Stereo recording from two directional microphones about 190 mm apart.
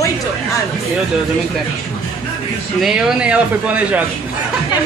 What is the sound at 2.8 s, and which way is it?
A man's voice, 5° right (ahead or behind).